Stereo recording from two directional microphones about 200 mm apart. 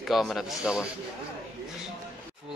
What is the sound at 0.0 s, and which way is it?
Speech, centre (ahead or behind).